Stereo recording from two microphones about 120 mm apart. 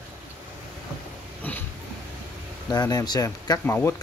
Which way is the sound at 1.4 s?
15° left (ahead or behind).